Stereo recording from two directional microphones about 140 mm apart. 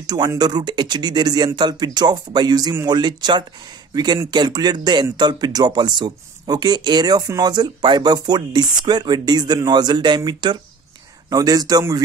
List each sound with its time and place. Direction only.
0.0 s speech: 30° right (ahead or behind)